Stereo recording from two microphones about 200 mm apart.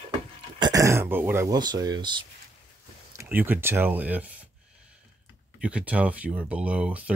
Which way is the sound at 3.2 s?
10° right (ahead or behind).